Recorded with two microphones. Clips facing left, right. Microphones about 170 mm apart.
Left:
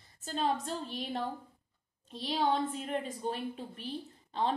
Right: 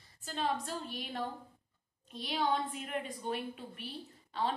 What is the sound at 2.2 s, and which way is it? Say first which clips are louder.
A woman's voice: left 3 dB; 30° left (ahead or behind).